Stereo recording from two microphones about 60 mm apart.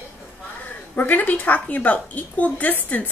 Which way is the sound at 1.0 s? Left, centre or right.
Left.